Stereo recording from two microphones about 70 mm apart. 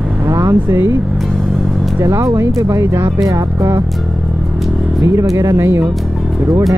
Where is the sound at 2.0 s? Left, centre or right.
Right.